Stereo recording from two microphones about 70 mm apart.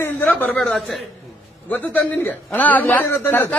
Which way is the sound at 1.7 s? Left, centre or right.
Left.